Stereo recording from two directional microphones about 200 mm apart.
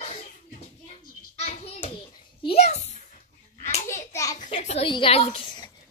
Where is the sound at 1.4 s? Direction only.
30° left (ahead or behind).